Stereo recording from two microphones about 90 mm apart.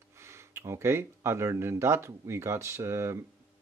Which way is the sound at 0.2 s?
30° right (ahead or behind).